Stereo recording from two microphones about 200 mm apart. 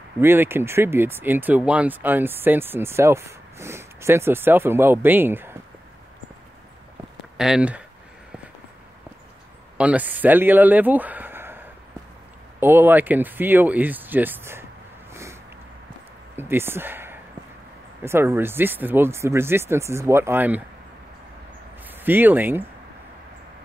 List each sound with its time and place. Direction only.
0.2 s speech: 10° right (ahead or behind)
7.3 s speech: 5° right (ahead or behind)
9.8 s speech: 5° right (ahead or behind)
16.3 s speech: 10° right (ahead or behind)
21.8 s speech: 10° right (ahead or behind)